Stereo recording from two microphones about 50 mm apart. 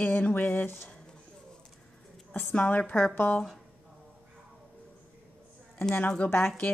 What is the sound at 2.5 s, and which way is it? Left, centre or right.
Speech, left.